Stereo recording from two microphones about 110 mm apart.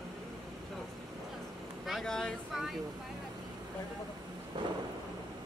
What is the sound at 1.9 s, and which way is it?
Speech, 5° left (ahead or behind).